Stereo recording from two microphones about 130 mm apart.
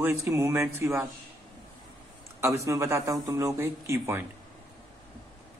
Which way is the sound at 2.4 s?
25° right (ahead or behind).